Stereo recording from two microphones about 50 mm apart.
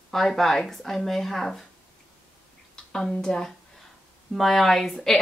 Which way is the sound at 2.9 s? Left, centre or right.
Centre.